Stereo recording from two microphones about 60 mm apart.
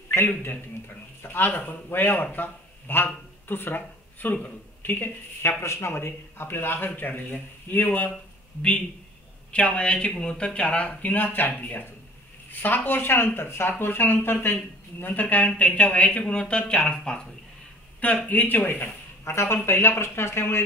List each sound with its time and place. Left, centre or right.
0.4 s speech: left
9.5 s speech: centre
19.2 s speech: left